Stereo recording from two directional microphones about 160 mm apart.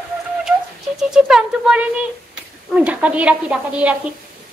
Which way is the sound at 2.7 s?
10° right (ahead or behind).